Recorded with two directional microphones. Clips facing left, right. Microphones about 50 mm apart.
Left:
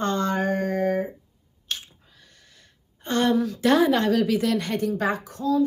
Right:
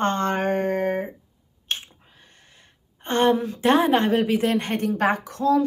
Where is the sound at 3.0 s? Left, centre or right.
Right.